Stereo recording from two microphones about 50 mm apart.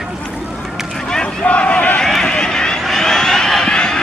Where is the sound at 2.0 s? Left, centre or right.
Centre.